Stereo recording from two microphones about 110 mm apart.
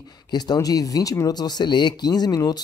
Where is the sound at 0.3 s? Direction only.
40° left (ahead or behind).